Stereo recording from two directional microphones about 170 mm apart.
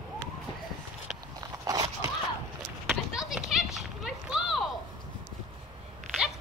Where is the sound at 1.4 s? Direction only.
20° right (ahead or behind).